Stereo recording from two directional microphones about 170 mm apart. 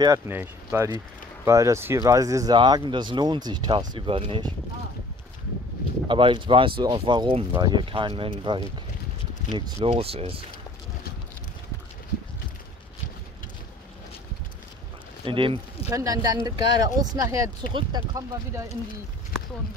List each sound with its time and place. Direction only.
0.0 s speech: 15° right (ahead or behind)
6.0 s speech: 30° right (ahead or behind)
15.2 s speech: 30° right (ahead or behind)
15.9 s speech: 20° right (ahead or behind)